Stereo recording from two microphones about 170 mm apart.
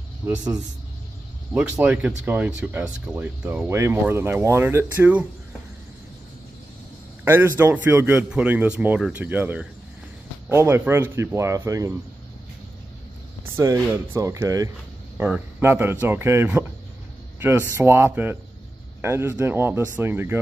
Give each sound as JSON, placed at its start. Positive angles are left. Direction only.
{"t": 1.5, "sound": "speech", "side_deg": -5}
{"t": 7.2, "sound": "speech", "side_deg": -15}
{"t": 13.6, "sound": "speech", "side_deg": -15}